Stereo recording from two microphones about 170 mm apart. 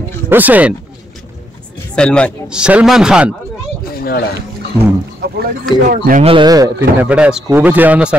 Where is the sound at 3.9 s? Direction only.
65° left (ahead or behind).